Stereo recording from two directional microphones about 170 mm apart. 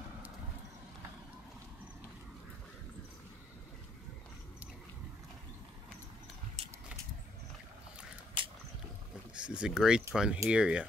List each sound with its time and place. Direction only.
9.3 s speech: 5° right (ahead or behind)